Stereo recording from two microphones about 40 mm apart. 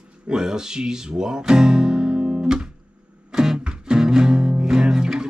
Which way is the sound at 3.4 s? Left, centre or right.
Centre.